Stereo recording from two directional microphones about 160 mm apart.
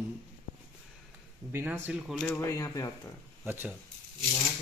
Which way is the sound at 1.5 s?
15° right (ahead or behind).